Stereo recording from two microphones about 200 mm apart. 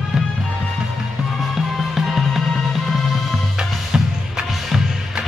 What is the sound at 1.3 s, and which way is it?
Music, centre (ahead or behind).